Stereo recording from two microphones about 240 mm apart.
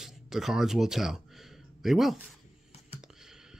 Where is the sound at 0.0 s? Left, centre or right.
Centre.